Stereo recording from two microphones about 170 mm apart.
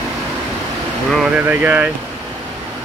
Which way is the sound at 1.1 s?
5° right (ahead or behind).